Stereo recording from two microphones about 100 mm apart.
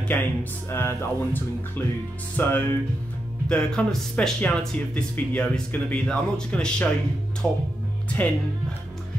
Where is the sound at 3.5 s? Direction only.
10° left (ahead or behind).